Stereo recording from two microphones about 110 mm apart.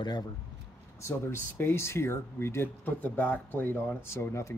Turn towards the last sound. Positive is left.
turn(degrees=25)  # may be behind; listen again after turning